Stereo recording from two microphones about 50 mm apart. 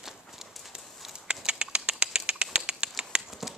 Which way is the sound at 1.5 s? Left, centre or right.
Centre.